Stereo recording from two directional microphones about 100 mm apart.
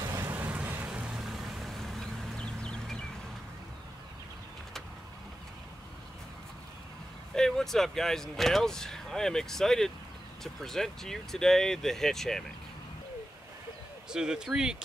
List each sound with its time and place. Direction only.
0.3 s a sound: 15° right (ahead or behind)
0.8 s vehicle: 10° right (ahead or behind); by 3.0 s 10° left (ahead or behind)
7.3 s speech: 5° left (ahead or behind)
14.1 s speech: 5° right (ahead or behind)